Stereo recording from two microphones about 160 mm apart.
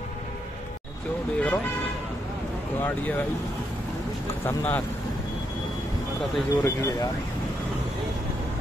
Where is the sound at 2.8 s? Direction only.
10° left (ahead or behind).